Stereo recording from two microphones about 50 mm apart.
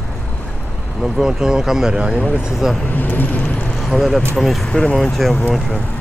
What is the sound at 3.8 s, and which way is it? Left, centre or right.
Speech, centre.